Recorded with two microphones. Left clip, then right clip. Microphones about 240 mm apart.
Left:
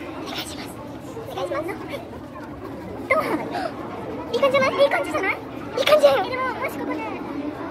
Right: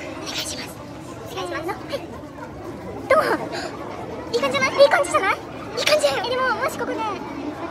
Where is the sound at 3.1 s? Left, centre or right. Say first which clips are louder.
Right 4 dB; centre.